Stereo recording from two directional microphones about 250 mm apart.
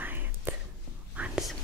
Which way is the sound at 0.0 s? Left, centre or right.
Centre.